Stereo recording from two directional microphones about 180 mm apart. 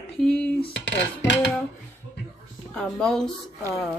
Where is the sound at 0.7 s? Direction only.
75° left (ahead or behind).